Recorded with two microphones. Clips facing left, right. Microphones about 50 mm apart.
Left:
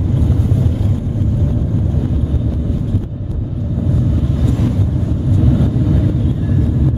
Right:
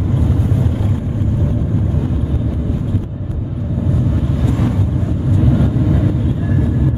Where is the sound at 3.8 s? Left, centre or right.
Centre.